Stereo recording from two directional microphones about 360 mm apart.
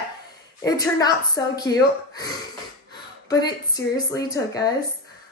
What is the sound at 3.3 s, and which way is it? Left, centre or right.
Speech, centre.